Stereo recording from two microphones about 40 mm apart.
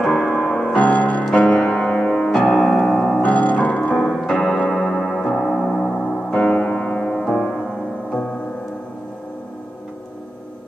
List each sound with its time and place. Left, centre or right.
0.0 s music: centre
0.4 s music: left; by 3.2 s centre
3.2 s music: left
4.6 s music: centre
6.5 s piano: left
7.2 s music: centre